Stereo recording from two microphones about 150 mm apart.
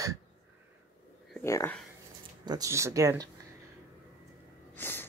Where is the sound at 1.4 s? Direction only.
15° left (ahead or behind).